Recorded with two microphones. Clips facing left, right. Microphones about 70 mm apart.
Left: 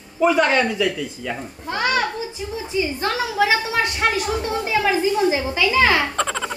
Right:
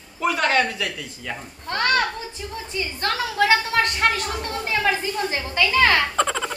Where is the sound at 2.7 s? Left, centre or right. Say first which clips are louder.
Left 4 dB; centre.